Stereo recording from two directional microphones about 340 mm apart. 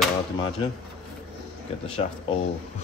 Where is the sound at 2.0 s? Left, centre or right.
Centre.